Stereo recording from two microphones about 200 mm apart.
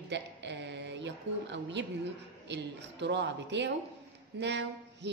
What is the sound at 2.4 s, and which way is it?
Mantra, 60° right (ahead or behind).